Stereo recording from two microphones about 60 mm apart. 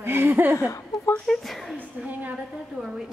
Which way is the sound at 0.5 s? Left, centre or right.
Left.